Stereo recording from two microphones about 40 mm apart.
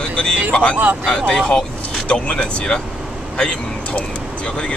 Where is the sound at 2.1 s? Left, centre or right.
Left.